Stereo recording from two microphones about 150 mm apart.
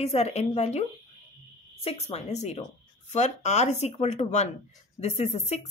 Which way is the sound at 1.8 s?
45° left (ahead or behind).